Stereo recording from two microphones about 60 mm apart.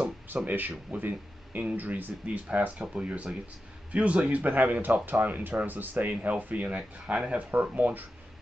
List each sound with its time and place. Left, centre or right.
0.5 s speech: right